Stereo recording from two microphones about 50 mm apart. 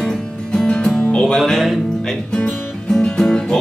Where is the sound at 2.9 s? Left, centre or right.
Centre.